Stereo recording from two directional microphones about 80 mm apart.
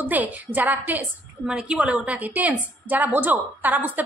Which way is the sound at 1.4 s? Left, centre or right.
Centre.